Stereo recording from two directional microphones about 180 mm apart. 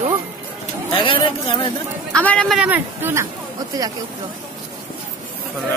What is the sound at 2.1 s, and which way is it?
Speech, 5° left (ahead or behind).